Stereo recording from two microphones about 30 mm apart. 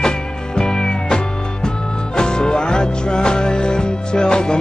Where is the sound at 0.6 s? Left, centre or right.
Left.